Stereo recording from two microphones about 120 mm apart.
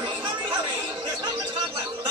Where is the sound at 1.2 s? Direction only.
40° right (ahead or behind).